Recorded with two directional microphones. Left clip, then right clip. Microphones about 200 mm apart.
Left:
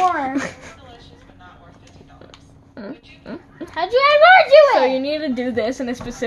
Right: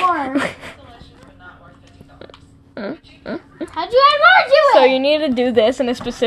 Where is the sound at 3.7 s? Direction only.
25° left (ahead or behind).